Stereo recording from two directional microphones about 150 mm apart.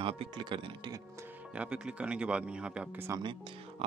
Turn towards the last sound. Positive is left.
turn(degrees=-10)  # may be behind; listen again after turning